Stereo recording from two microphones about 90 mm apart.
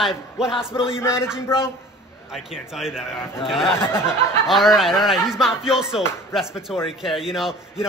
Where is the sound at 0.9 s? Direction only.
30° left (ahead or behind).